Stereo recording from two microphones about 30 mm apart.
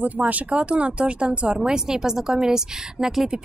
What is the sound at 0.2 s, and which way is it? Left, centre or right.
Speech, right.